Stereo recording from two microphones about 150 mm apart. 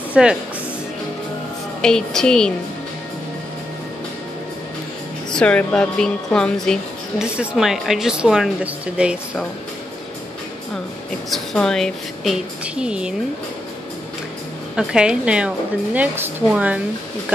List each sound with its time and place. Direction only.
0.1 s speech: 5° right (ahead or behind)
1.8 s speech: 5° left (ahead or behind)
5.3 s speech: 5° left (ahead or behind)
11.2 s speech: centre (ahead or behind)
14.8 s speech: 5° right (ahead or behind)